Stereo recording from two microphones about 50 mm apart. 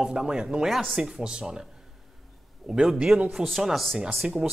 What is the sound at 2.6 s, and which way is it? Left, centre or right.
Speech, centre.